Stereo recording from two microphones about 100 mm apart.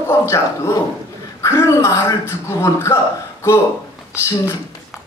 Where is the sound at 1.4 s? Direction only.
30° left (ahead or behind).